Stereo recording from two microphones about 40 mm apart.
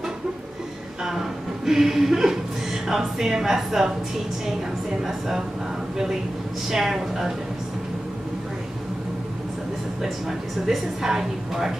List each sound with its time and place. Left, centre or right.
1.7 s a woman's voice: centre
6.7 s a woman's voice: centre
10.7 s a woman's voice: centre